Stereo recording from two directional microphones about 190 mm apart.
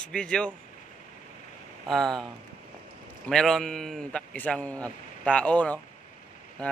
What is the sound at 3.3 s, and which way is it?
A man's voice, centre (ahead or behind).